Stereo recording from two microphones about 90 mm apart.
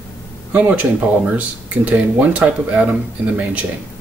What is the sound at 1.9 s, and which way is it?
Speech, 15° right (ahead or behind).